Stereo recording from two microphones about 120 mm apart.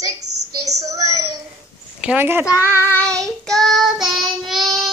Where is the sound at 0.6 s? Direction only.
30° right (ahead or behind).